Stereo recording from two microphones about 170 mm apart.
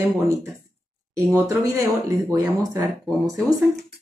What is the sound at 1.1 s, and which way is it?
Speech, 20° right (ahead or behind).